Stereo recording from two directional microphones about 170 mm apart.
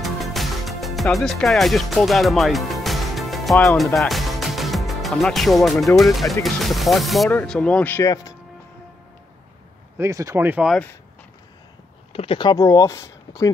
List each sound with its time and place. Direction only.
0.0 s music: centre (ahead or behind)
6.4 s speech: centre (ahead or behind); by 8.4 s 20° left (ahead or behind)
9.9 s speech: 20° right (ahead or behind)
12.1 s speech: 35° left (ahead or behind); by 13.5 s 20° left (ahead or behind)